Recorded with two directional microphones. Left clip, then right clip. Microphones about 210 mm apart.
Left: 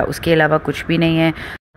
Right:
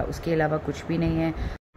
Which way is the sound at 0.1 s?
30° left (ahead or behind).